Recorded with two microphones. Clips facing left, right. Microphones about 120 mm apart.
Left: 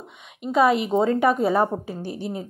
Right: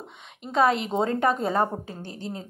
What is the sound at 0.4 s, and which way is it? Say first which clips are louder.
A woman's voice: left 3 dB; 5° left (ahead or behind).